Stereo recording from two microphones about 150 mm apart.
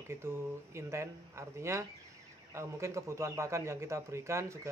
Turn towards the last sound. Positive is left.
turn(degrees=-20)  # may be behind; listen again after turning